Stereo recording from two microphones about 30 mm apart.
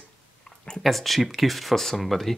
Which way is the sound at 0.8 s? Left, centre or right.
Centre.